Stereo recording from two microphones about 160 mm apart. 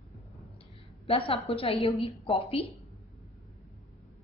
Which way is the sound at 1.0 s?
35° left (ahead or behind).